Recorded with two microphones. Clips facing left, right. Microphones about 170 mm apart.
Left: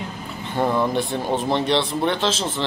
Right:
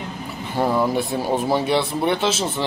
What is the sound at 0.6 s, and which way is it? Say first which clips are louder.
Speech: right 1 dB; 5° right (ahead or behind).